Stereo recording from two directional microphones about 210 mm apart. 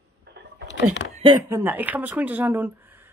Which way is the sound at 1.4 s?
10° right (ahead or behind).